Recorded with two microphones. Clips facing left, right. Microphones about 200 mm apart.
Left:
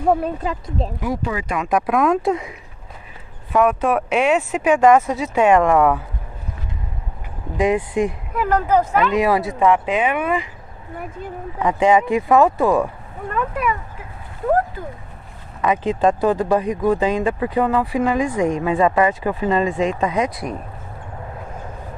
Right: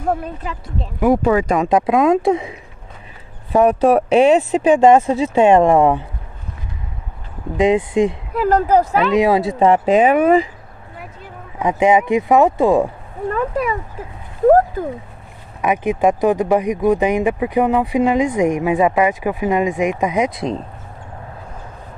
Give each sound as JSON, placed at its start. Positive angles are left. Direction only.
{"t": 0.4, "sound": "speech", "side_deg": 35}
{"t": 1.0, "sound": "speech", "side_deg": -55}
{"t": 1.7, "sound": "speech", "side_deg": -20}
{"t": 3.5, "sound": "speech", "side_deg": -35}
{"t": 7.5, "sound": "speech", "side_deg": -20}
{"t": 11.6, "sound": "speech", "side_deg": -20}
{"t": 15.6, "sound": "speech", "side_deg": -15}